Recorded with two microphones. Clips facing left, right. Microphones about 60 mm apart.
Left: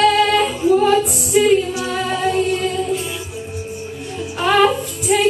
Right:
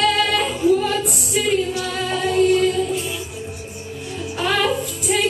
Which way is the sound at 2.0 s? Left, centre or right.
Left.